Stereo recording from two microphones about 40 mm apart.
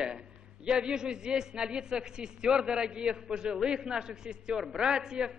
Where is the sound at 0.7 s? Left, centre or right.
Right.